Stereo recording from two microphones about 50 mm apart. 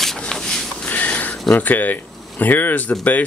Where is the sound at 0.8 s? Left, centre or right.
Left.